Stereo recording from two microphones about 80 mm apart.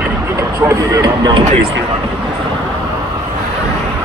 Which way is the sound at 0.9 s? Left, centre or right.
Right.